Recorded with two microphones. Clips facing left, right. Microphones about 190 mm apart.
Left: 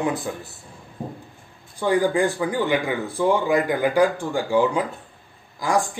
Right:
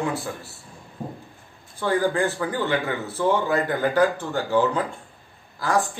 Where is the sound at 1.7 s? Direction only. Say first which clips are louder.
Left 2 dB; 15° left (ahead or behind).